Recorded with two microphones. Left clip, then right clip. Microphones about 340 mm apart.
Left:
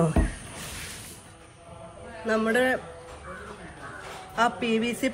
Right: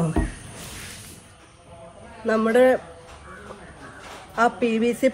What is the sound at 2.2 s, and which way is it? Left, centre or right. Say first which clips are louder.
Speech: right 6 dB; centre.